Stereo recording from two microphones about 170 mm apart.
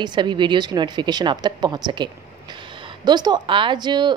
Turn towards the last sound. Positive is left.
turn(degrees=-25)  # may be behind; listen again after turning